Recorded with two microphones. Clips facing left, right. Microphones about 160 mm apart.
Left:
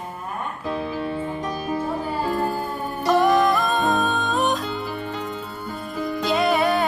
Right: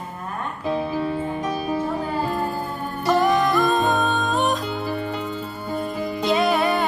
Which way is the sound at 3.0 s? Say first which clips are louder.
Left 1 dB; centre (ahead or behind).